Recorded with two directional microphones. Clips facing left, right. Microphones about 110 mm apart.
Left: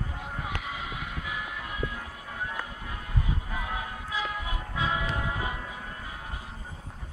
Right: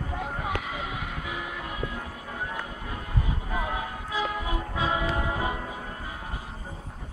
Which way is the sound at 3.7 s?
35° right (ahead or behind).